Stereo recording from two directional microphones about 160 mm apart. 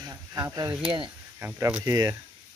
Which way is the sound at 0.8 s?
30° right (ahead or behind).